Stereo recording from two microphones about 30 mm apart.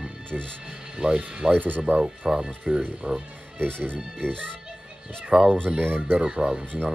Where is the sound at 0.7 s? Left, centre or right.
Right.